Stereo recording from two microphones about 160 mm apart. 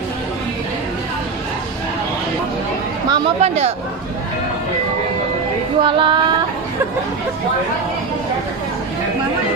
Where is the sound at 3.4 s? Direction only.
40° right (ahead or behind).